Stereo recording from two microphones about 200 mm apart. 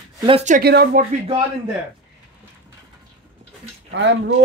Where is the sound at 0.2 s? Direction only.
30° right (ahead or behind).